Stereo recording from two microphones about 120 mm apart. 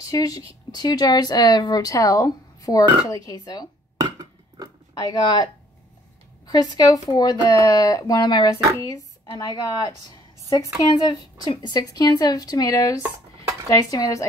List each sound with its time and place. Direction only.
0.1 s a woman's voice: 30° left (ahead or behind)
4.0 s a sound: 30° right (ahead or behind)
5.0 s a woman's voice: 35° left (ahead or behind)